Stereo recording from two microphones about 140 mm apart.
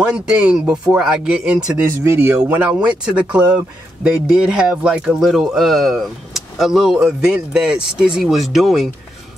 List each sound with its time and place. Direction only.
0.1 s speech: 5° right (ahead or behind)
1.8 s speech: 20° right (ahead or behind); by 8.8 s centre (ahead or behind)